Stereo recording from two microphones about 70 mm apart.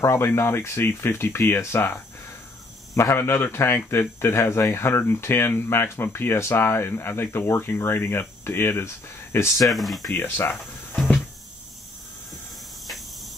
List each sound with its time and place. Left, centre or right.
0.0 s speech: left
9.7 s speech: centre
10.1 s speech: left
12.8 s cricket: centre